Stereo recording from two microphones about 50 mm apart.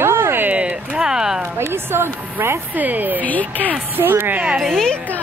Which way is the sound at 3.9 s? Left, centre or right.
Right.